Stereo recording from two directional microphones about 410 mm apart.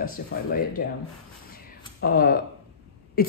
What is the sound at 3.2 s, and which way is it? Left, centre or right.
Throat clearing, left.